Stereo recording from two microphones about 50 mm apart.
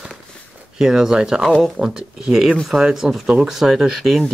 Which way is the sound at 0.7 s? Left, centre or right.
Centre.